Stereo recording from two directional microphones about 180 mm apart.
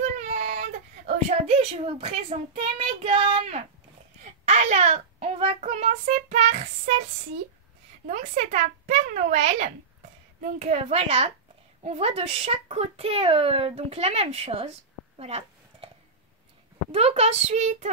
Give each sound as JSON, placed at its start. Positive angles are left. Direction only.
{"t": 0.0, "sound": "a child's voice", "side_deg": -40}
{"t": 8.1, "sound": "speech", "side_deg": -40}
{"t": 15.1, "sound": "a sound", "side_deg": -35}
{"t": 16.9, "sound": "speech", "side_deg": -35}